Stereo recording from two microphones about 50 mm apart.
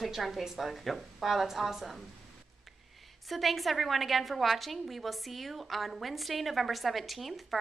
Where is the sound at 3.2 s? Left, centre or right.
Centre.